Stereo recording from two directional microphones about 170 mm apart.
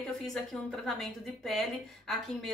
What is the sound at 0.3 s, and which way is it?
A woman's voice, centre (ahead or behind).